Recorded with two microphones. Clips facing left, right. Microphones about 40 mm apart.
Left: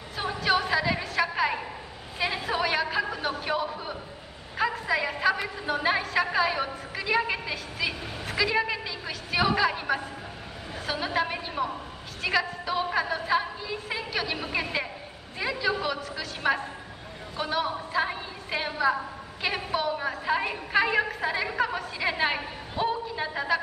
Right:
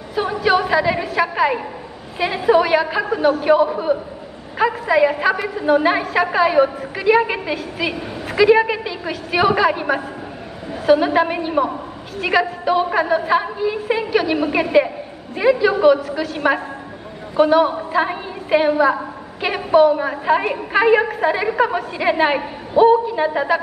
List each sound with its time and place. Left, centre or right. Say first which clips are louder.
0.1 s a sound: right 9 dB; centre
2.1 s a man's voice: right 13 dB; centre
5.3 s a woman's voice: right 12 dB; right